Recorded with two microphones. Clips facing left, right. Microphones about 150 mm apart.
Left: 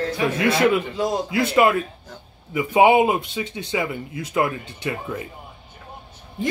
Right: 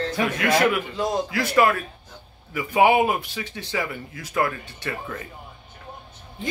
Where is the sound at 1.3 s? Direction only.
20° left (ahead or behind).